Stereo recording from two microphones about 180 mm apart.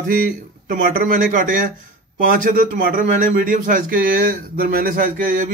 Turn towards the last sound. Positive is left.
turn(degrees=-50)  # may be behind; listen again after turning